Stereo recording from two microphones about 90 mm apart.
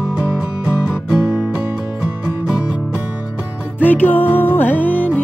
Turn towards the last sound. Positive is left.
turn(degrees=20)  # may be behind; listen again after turning